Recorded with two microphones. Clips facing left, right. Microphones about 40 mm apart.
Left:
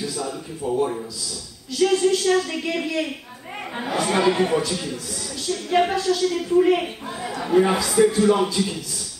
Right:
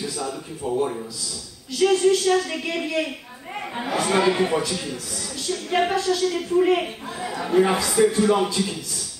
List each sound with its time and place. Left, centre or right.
0.1 s a man's voice: centre